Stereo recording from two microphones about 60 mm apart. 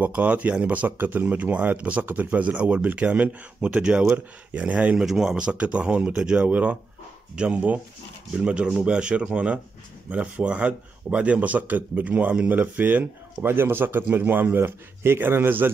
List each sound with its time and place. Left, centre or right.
0.0 s speech: right
5.0 s speech: centre; by 15.7 s right